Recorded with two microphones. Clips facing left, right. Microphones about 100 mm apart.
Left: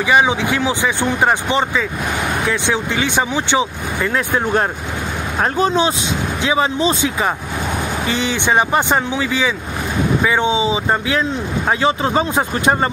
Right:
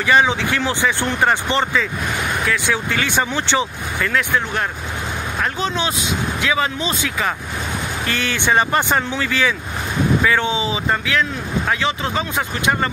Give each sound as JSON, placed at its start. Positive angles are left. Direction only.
{"t": 0.0, "sound": "speech", "side_deg": 15}
{"t": 2.4, "sound": "speech", "side_deg": 25}
{"t": 4.1, "sound": "speech", "side_deg": 35}
{"t": 8.1, "sound": "speech", "side_deg": 15}